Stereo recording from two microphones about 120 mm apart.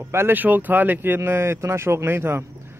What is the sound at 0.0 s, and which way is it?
A man's voice, 15° right (ahead or behind).